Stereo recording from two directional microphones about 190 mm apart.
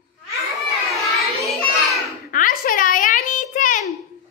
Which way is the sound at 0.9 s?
Centre (ahead or behind).